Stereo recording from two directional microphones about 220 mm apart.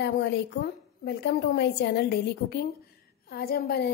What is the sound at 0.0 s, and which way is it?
A woman's voice, 50° left (ahead or behind).